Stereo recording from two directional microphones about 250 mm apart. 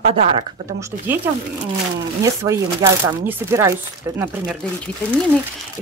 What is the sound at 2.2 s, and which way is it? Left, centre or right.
Speech, centre.